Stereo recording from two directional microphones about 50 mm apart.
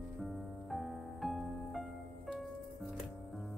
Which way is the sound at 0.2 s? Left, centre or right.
Centre.